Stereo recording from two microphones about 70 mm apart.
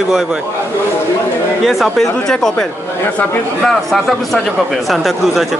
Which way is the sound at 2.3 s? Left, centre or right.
Centre.